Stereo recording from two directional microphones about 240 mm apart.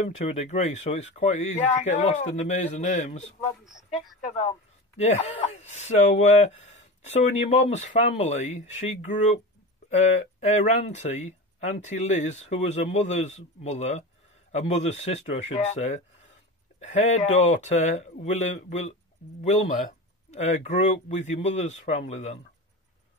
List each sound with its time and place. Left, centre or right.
0.0 s speech: left
3.6 s a woman's voice: centre
4.2 s speech: left